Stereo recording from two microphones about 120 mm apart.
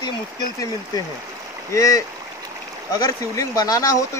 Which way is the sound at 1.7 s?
25° left (ahead or behind).